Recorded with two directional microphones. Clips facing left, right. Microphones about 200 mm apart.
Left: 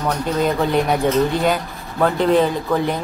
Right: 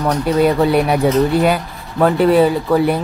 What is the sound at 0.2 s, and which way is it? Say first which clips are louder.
Speech: right 7 dB; 10° right (ahead or behind).